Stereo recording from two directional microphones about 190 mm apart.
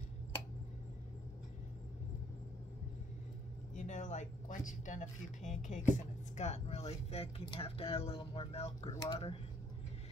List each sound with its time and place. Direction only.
3.7 s speech: 40° left (ahead or behind)